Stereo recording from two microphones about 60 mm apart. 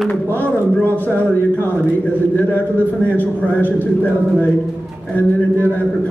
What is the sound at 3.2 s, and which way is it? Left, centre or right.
A man's voice, left.